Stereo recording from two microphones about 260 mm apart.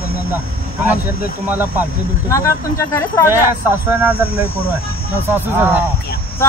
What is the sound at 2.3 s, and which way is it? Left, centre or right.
Speech, centre.